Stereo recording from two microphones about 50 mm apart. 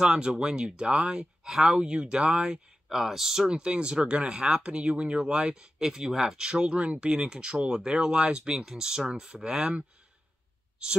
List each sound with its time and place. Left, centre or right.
0.0 s speech: centre
3.4 s speech: centre